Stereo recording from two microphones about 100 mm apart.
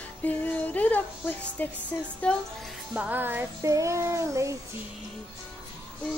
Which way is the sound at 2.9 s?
15° right (ahead or behind).